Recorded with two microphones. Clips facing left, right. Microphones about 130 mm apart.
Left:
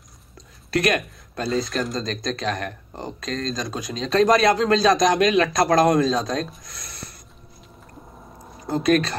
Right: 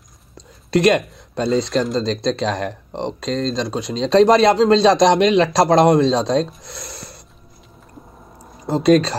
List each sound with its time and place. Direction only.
0.7 s speech: 25° right (ahead or behind)
8.6 s speech: 30° right (ahead or behind)